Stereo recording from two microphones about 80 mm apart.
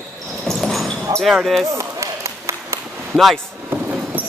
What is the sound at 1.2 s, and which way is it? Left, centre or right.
Speech, centre.